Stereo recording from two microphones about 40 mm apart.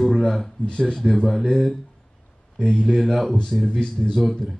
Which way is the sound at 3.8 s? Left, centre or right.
Centre.